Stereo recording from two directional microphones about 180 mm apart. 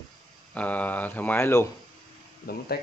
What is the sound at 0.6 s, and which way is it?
Speech, 10° left (ahead or behind).